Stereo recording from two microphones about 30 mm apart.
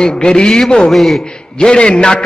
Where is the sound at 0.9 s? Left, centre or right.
Centre.